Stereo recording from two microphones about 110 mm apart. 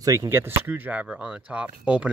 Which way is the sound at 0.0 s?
30° right (ahead or behind).